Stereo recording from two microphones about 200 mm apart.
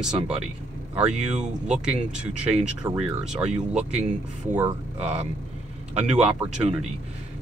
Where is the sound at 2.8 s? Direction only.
20° right (ahead or behind).